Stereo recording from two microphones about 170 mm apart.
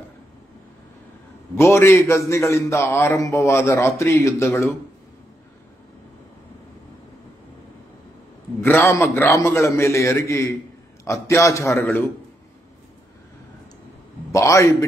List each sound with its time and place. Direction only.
1.5 s a man's voice: 15° left (ahead or behind)
8.5 s a man's voice: 15° left (ahead or behind)
14.3 s a man's voice: 20° left (ahead or behind)